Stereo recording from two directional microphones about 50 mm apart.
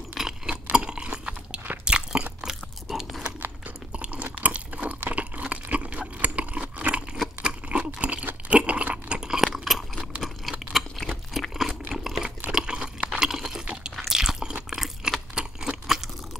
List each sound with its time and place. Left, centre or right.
0.2 s a sound: centre
0.7 s chewing: centre
1.1 s crunch: right
2.9 s biting: centre
3.9 s chewing: right
4.2 s crunch: right
5.1 s a sound: right
8.5 s crunch: right; by 9.8 s centre
10.7 s chewing: centre
11.5 s a sound: centre
12.4 s water: centre
13.9 s chewing: centre